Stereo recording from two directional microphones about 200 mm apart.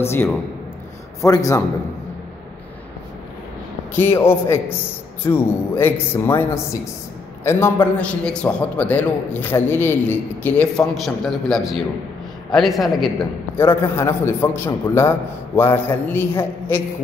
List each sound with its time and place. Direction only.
0.0 s a man's voice: 10° left (ahead or behind)
3.9 s a man's voice: 10° left (ahead or behind)
13.6 s a man's voice: 10° left (ahead or behind)